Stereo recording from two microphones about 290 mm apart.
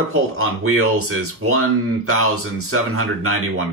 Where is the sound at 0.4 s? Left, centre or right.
Right.